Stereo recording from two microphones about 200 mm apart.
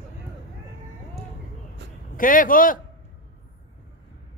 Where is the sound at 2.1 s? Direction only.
45° left (ahead or behind).